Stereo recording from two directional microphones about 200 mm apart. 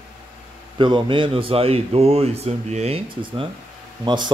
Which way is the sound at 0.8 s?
25° right (ahead or behind).